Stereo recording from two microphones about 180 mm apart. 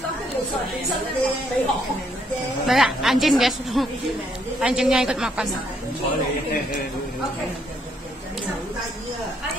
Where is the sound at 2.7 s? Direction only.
Centre (ahead or behind).